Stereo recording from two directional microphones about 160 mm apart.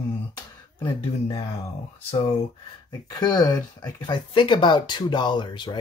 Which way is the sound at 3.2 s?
25° left (ahead or behind).